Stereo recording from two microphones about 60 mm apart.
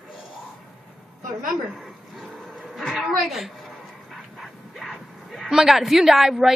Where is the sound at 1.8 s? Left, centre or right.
Centre.